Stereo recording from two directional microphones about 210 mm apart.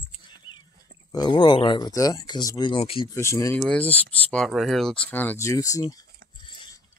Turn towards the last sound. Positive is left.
turn(degrees=15)  # may be behind; listen again after turning